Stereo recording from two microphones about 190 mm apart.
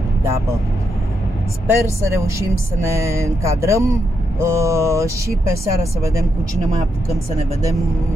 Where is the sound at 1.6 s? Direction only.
15° right (ahead or behind).